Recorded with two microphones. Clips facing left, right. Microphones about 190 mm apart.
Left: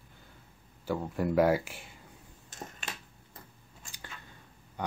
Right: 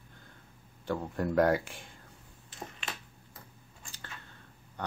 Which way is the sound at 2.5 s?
45° left (ahead or behind).